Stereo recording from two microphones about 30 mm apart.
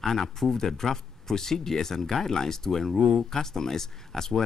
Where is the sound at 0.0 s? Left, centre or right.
Centre.